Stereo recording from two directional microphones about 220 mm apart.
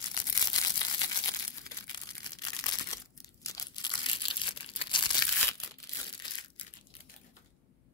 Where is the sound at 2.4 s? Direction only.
15° left (ahead or behind).